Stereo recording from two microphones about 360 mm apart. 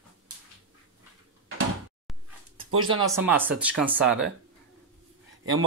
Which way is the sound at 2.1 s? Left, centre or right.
Centre.